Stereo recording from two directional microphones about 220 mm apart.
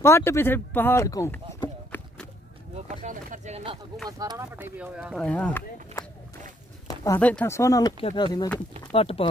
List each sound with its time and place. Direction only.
0.0 s speech: 10° left (ahead or behind)
2.7 s a sound: 35° right (ahead or behind)
4.2 s speech: 15° right (ahead or behind); by 6.0 s 5° left (ahead or behind)
7.1 s speech: 5° left (ahead or behind); by 9.3 s 25° left (ahead or behind)